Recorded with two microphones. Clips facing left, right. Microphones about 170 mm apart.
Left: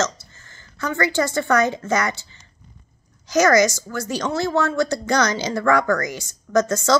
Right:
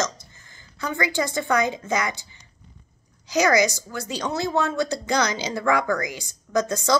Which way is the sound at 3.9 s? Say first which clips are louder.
Left 4 dB; 15° right (ahead or behind).